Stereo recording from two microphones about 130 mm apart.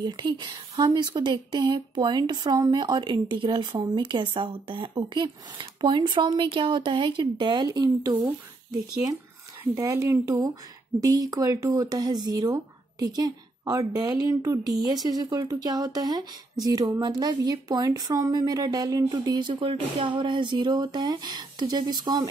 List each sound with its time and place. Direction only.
0.0 s speech: 35° right (ahead or behind)
9.8 s speech: 20° right (ahead or behind)